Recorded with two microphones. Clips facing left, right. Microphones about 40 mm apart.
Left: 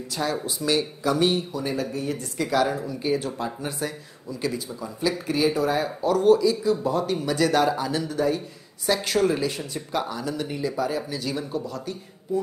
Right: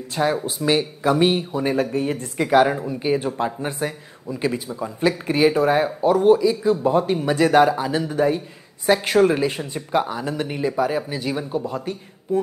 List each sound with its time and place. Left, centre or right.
0.1 s speech: right
5.9 s speech: right